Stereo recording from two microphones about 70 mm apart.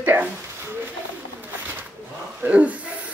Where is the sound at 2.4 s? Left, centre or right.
Centre.